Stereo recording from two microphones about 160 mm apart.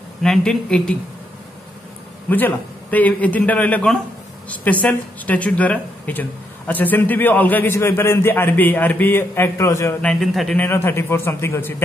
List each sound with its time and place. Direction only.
0.2 s speech: 5° left (ahead or behind)
2.2 s a man's voice: 10° left (ahead or behind)
10.2 s a man's voice: centre (ahead or behind)